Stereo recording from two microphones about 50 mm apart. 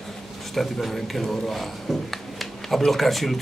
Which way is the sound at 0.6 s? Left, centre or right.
Centre.